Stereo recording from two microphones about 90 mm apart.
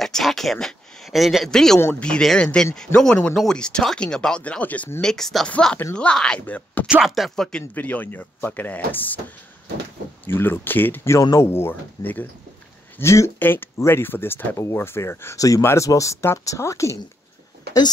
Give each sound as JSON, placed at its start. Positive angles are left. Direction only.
{"t": 0.0, "sound": "speech", "side_deg": 0}
{"t": 5.0, "sound": "speech", "side_deg": 5}
{"t": 6.9, "sound": "speech", "side_deg": -5}
{"t": 7.7, "sound": "speech", "side_deg": 20}
{"t": 10.2, "sound": "speech", "side_deg": 25}
{"t": 11.1, "sound": "speech", "side_deg": 35}
{"t": 13.0, "sound": "speech", "side_deg": 35}
{"t": 13.4, "sound": "speech", "side_deg": 20}